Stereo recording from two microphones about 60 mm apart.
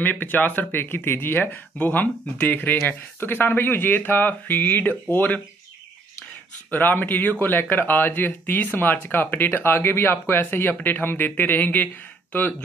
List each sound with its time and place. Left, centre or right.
0.0 s speech: left
1.8 s speech: left
6.7 s speech: left